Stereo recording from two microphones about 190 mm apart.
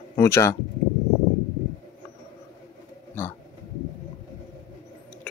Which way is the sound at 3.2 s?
10° left (ahead or behind).